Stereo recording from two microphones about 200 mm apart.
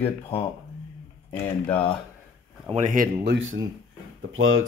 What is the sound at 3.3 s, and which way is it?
Speech, 70° right (ahead or behind).